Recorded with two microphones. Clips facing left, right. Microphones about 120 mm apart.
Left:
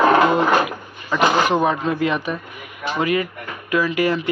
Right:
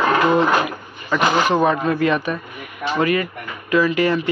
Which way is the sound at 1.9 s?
15° left (ahead or behind).